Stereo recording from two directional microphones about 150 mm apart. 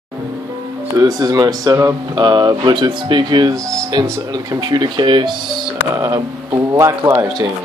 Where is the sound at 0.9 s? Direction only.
25° right (ahead or behind).